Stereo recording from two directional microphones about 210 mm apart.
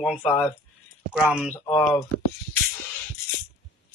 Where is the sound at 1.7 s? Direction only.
15° left (ahead or behind).